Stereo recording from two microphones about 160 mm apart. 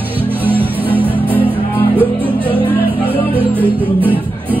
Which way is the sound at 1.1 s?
10° left (ahead or behind).